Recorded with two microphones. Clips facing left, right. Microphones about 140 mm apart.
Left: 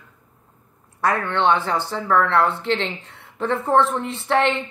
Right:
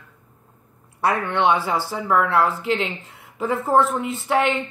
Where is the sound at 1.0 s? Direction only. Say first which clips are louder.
Even; 15° right (ahead or behind).